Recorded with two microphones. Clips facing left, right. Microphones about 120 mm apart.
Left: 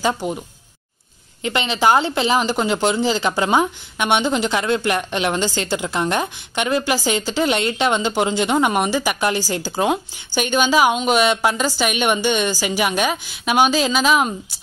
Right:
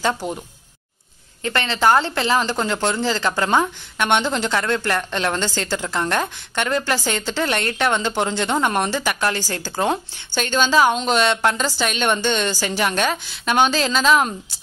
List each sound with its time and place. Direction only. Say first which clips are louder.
0.0 s speech: left 1 dB; 5° left (ahead or behind)
1.4 s a woman's voice: left 1 dB; 15° left (ahead or behind)